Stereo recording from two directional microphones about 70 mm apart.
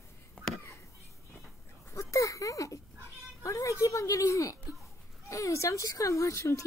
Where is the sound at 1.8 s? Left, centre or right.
Left.